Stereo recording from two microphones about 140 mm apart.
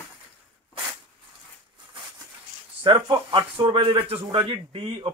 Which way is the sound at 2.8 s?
35° right (ahead or behind).